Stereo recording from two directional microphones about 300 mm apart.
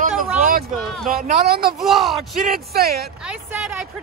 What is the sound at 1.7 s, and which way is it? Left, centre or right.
Speech, centre.